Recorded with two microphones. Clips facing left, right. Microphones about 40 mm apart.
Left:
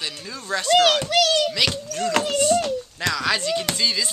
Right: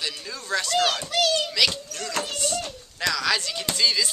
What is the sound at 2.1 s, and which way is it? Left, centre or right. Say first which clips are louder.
Speech: left 8 dB; left.